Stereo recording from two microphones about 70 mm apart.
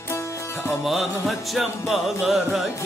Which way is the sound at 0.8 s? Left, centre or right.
Centre.